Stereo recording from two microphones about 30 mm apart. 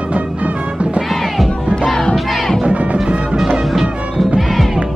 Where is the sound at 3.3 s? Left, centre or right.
Right.